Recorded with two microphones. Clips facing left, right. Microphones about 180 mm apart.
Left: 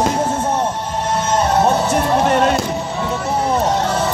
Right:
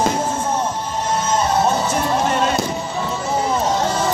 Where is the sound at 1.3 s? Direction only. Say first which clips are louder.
Left 3 dB; 65° left (ahead or behind).